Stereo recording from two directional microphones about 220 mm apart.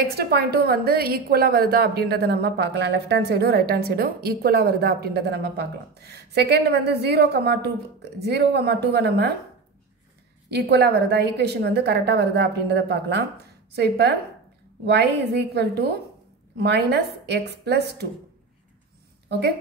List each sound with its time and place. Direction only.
0.1 s a woman's voice: 45° right (ahead or behind)
10.5 s a woman's voice: 50° right (ahead or behind)
15.5 s a woman's voice: 50° right (ahead or behind)